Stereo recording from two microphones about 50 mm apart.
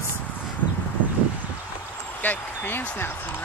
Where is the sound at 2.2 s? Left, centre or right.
Left.